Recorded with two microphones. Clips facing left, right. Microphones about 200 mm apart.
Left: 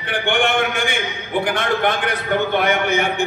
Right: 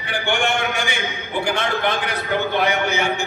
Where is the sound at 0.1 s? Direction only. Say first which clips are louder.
Left 3 dB; 55° left (ahead or behind).